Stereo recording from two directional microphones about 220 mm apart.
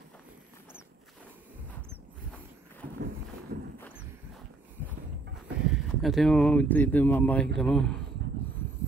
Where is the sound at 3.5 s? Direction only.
50° right (ahead or behind).